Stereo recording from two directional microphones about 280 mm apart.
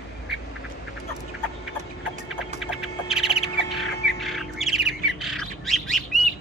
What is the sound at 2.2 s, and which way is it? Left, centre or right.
Bird, centre.